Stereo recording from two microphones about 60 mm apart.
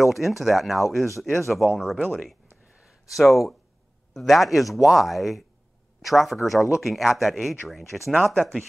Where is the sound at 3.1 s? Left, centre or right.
Centre.